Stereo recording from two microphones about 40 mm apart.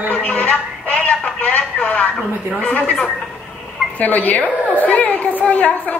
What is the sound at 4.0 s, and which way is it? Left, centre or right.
A woman's voice, left.